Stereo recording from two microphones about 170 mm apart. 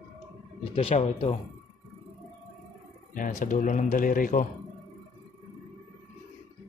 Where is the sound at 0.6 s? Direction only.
35° left (ahead or behind).